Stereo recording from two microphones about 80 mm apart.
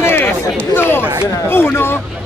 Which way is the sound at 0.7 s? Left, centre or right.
Left.